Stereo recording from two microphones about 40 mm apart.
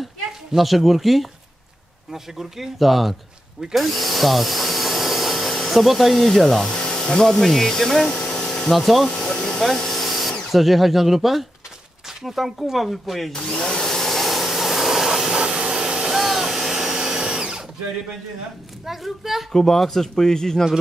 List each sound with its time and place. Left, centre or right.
0.6 s speech: centre
3.7 s a sound: centre
5.5 s speech: centre
6.8 s a sound: centre
7.2 s speech: centre
8.1 s a sound: centre
8.7 s speech: centre
13.3 s vacuum cleaner: centre
16.2 s a sound: centre
16.9 s tools: centre
18.9 s speech: centre
19.5 s speech: centre